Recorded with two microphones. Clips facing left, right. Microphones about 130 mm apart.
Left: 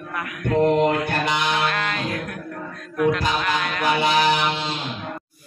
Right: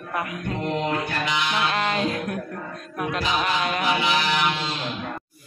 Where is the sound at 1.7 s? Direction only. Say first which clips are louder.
Right 2 dB; 25° right (ahead or behind).